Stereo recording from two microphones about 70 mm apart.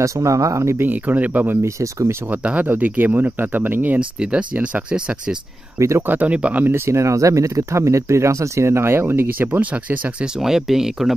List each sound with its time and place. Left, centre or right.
0.0 s speech: right
0.8 s speech: right
1.6 s speech: right
2.3 s speech: right
5.8 s speech: right
6.0 s speech: right
6.7 s speech: right; by 10.3 s centre
10.4 s speech: centre